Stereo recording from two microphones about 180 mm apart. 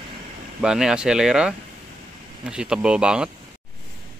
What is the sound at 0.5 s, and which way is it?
Speech, 5° right (ahead or behind).